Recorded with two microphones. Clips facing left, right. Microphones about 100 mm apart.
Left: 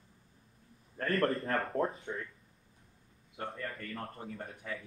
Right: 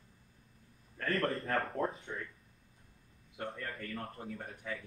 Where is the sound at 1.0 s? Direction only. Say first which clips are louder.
Left 2 dB; 40° left (ahead or behind).